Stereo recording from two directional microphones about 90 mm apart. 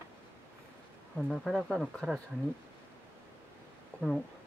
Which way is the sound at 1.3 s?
Centre (ahead or behind).